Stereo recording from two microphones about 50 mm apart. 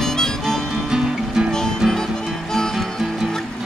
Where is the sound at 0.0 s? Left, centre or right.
Centre.